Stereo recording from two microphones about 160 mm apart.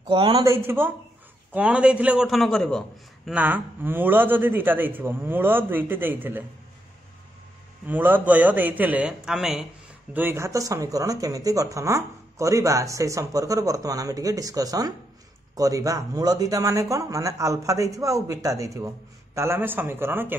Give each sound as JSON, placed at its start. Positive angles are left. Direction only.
{"t": 0.0, "sound": "a man's voice", "side_deg": -30}
{"t": 3.3, "sound": "a man's voice", "side_deg": -10}
{"t": 7.8, "sound": "a man's voice", "side_deg": -10}
{"t": 10.1, "sound": "a man's voice", "side_deg": -15}